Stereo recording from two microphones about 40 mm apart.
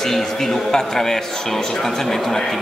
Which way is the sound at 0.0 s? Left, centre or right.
Centre.